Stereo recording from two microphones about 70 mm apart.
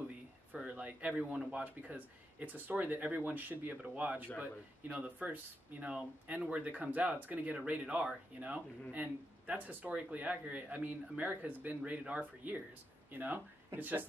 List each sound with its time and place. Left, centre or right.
0.5 s speech: centre